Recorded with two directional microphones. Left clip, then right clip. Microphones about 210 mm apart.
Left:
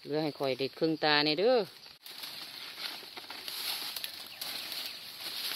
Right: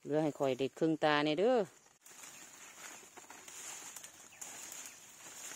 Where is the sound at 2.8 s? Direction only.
10° right (ahead or behind).